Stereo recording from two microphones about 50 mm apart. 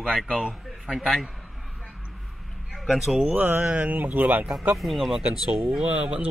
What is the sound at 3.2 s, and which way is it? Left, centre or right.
Speech, right.